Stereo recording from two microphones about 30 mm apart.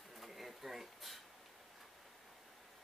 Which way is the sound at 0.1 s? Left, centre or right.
Centre.